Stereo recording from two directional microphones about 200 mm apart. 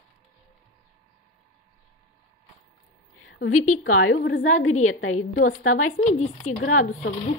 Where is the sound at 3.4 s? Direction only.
90° left.